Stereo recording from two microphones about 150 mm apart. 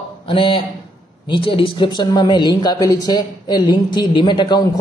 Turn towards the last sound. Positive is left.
turn(degrees=30)  # may be behind; listen again after turning